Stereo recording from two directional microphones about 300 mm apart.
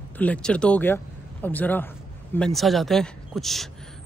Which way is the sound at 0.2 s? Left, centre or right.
Centre.